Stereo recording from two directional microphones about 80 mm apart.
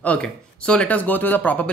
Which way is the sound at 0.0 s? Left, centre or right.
Centre.